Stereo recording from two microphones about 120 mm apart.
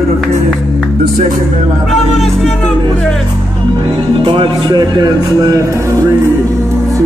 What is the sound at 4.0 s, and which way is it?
Speech, 45° right (ahead or behind).